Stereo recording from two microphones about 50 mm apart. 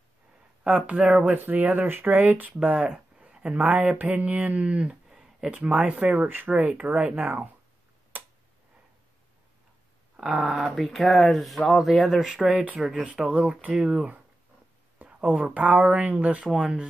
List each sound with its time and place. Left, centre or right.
0.9 s speech: centre
1.3 s speech: right
6.2 s speech: right
6.9 s speech: right
8.1 s tick-tock: right
10.2 s speech: centre
13.0 s speech: centre
13.7 s speech: centre
15.0 s speech: right
16.4 s speech: centre